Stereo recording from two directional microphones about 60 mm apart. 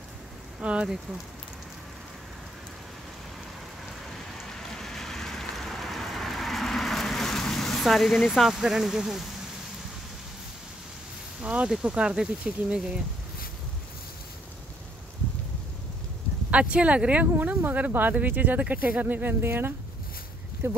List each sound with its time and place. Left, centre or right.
0.6 s speech: centre
4.1 s rain: centre
11.4 s speech: centre
16.4 s speech: right